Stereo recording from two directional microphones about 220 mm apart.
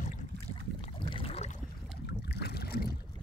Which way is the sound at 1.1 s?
25° left (ahead or behind).